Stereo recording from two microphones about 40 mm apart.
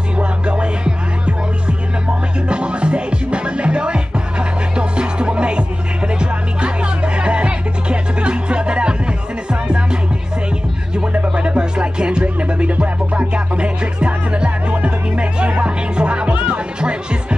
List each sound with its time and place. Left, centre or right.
0.2 s music: right
2.5 s music: right
11.1 s music: right